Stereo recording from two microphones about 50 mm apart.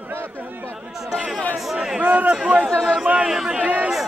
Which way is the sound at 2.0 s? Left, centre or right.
Right.